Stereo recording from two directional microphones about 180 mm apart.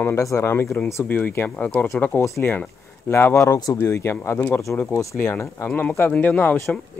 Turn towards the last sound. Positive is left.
turn(degrees=10)  # may be behind; listen again after turning